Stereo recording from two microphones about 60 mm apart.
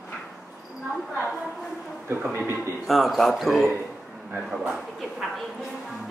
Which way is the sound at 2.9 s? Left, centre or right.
Centre.